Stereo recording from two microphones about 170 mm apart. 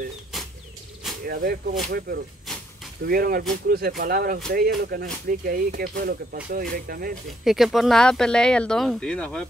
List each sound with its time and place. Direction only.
1.2 s speech: 60° right (ahead or behind)
7.4 s speech: centre (ahead or behind)